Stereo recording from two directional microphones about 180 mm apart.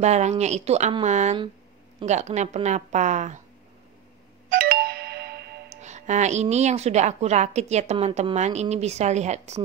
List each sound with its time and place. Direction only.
0.0 s a woman's voice: 40° right (ahead or behind)
4.5 s music: 55° right (ahead or behind)
5.7 s a woman's voice: 40° right (ahead or behind)